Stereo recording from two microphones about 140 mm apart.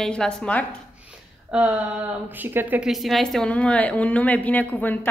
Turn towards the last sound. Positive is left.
turn(degrees=10)  # may be behind; listen again after turning